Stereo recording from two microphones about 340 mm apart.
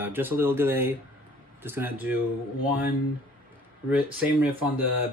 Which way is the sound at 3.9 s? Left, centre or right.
Centre.